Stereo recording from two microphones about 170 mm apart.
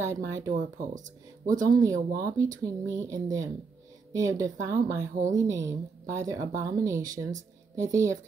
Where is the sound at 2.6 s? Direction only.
20° right (ahead or behind).